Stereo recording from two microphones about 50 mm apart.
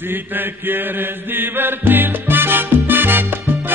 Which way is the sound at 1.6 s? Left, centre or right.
Right.